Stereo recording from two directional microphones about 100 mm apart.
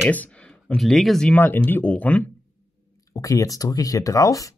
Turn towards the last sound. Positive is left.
turn(degrees=35)  # may be behind; listen again after turning